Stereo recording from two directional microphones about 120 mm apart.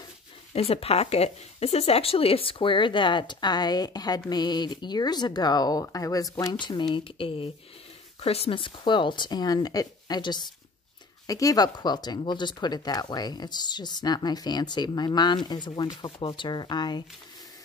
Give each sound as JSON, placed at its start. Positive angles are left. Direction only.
{"t": 0.5, "sound": "speech", "side_deg": 55}